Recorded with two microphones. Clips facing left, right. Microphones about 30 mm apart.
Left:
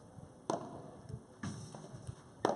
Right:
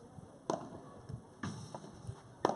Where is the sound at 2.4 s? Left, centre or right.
Centre.